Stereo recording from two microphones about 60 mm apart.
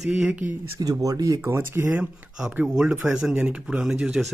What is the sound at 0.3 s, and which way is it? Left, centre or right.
Speech, right.